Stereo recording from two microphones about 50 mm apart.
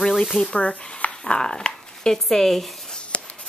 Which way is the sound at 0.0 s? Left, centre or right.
Centre.